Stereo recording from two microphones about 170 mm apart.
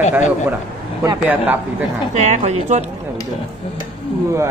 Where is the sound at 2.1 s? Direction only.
40° right (ahead or behind).